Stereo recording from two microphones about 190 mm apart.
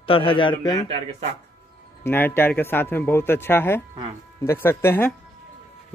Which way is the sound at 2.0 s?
10° left (ahead or behind).